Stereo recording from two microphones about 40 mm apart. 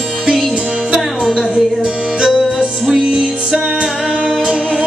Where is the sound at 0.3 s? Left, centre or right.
Centre.